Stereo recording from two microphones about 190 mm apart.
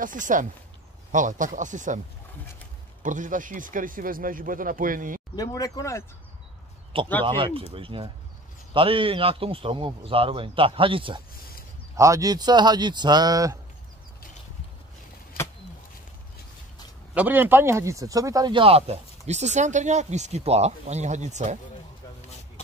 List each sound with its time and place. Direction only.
0.0 s speech: 45° right (ahead or behind)
3.0 s speech: 40° right (ahead or behind)
5.3 s speech: 20° left (ahead or behind)
6.9 s a man's voice: 30° right (ahead or behind)
17.1 s speech: 10° right (ahead or behind); by 21.5 s 40° right (ahead or behind)